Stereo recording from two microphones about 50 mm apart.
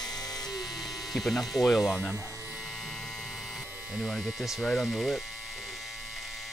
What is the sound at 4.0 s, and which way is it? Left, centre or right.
Speech, centre.